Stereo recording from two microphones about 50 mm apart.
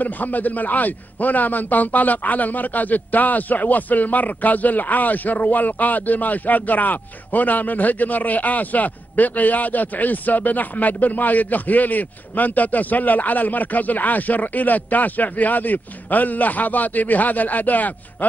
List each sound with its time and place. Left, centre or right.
0.0 s a man's voice: left